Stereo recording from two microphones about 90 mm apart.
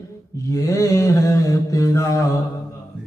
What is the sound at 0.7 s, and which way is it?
Mantra, 35° left (ahead or behind).